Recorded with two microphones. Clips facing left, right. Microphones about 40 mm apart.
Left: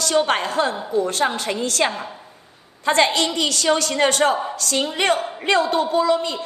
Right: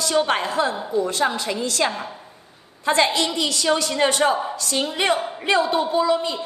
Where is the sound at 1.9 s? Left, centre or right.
Centre.